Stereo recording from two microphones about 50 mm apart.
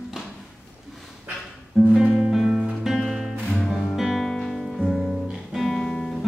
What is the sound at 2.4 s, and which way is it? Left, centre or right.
Music, centre.